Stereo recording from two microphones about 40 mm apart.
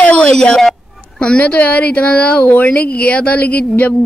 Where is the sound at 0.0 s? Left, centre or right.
Left.